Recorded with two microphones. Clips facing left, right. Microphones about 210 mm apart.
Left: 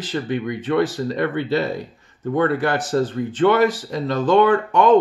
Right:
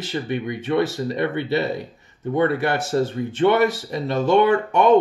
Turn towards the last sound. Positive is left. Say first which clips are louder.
# left 1 dB
turn(degrees=-25)  # may be behind; listen again after turning